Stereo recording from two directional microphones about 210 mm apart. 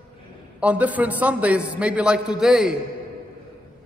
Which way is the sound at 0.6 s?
5° right (ahead or behind).